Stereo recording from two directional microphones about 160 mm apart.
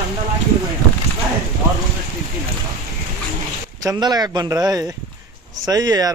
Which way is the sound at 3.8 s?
25° right (ahead or behind).